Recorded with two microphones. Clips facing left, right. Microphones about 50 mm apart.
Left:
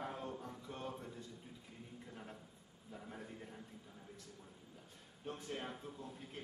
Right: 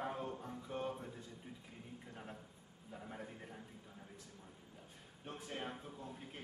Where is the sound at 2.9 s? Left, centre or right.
Centre.